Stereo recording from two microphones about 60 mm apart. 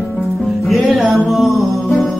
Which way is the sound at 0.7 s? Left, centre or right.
Centre.